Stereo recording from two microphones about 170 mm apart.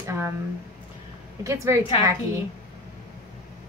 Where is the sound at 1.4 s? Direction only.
20° right (ahead or behind).